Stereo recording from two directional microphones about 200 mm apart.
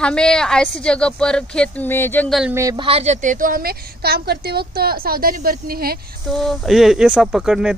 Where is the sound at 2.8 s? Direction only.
30° right (ahead or behind); by 6.0 s 50° right (ahead or behind).